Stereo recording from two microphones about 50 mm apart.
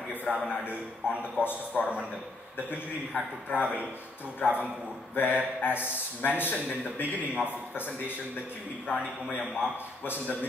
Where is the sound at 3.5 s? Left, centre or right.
Left.